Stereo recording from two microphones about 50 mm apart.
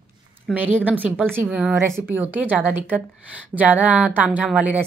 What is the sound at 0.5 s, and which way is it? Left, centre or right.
Speech, right.